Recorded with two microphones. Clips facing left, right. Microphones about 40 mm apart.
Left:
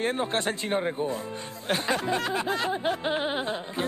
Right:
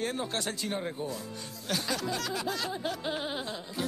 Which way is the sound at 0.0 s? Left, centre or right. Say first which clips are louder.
Left 6 dB; left.